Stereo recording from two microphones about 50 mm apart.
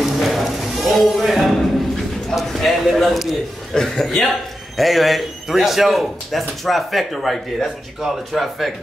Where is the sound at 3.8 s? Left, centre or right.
Centre.